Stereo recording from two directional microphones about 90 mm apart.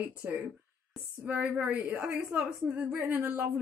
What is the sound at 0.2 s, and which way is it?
A woman's voice, 15° right (ahead or behind).